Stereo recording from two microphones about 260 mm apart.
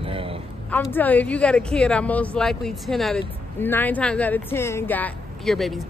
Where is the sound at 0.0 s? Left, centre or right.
Right.